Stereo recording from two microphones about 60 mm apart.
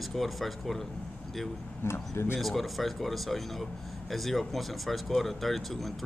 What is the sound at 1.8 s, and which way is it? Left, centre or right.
Speech, left.